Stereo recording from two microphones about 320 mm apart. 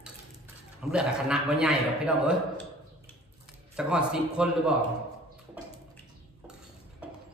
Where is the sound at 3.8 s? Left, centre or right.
Centre.